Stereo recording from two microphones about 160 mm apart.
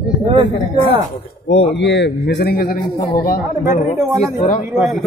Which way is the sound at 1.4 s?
90° left.